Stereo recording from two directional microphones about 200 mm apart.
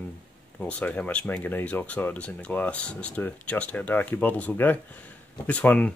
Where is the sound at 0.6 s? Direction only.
5° left (ahead or behind).